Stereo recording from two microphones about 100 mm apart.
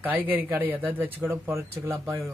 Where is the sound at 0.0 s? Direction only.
15° right (ahead or behind).